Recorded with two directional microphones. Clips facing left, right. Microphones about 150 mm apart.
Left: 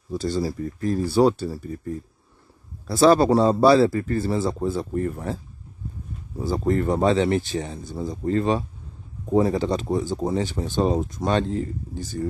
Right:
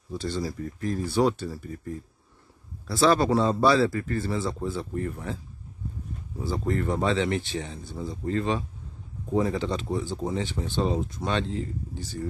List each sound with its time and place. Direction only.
0.1 s speech: 40° left (ahead or behind)
6.4 s speech: 35° left (ahead or behind)